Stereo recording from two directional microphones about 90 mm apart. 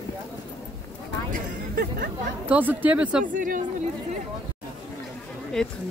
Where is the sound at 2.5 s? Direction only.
20° right (ahead or behind).